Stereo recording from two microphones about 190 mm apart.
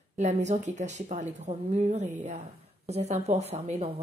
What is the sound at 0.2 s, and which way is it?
Speech, 40° right (ahead or behind).